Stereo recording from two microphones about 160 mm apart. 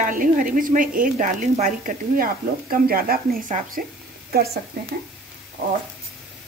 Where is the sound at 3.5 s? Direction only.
45° right (ahead or behind).